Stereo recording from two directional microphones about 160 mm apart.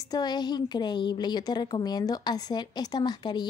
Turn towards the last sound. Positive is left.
turn(degrees=25)  # may be behind; listen again after turning